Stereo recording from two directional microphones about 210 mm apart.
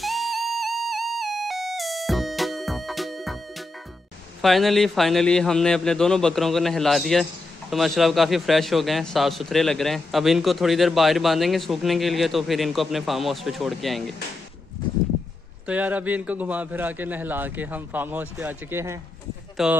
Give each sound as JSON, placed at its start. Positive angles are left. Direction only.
{"t": 0.0, "sound": "music", "side_deg": 0}
{"t": 4.4, "sound": "a man's voice", "side_deg": 0}
{"t": 15.6, "sound": "a man's voice", "side_deg": -5}